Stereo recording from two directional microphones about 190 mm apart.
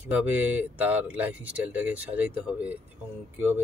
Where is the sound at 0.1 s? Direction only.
10° right (ahead or behind).